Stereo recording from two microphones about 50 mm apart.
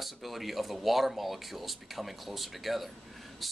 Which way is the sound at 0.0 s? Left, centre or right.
Centre.